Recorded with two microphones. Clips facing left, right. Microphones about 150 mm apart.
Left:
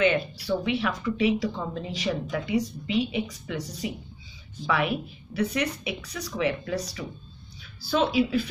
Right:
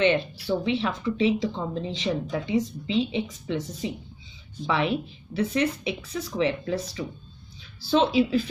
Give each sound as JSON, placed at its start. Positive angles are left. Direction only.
{"t": 0.0, "sound": "speech", "side_deg": -30}